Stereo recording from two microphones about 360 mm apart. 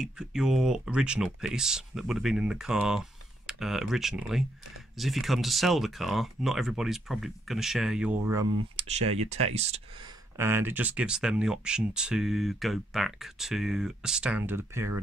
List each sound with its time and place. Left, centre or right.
0.0 s speech: centre
8.7 s speech: centre
10.3 s speech: centre